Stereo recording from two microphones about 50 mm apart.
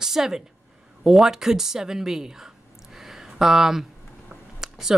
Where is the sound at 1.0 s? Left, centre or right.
Centre.